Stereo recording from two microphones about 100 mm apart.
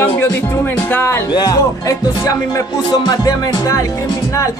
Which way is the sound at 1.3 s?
40° left (ahead or behind).